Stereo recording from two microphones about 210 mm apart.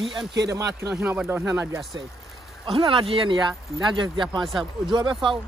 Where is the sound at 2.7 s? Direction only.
25° right (ahead or behind).